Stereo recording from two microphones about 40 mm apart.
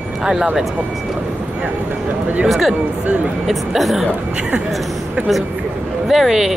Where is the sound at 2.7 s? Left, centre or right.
Right.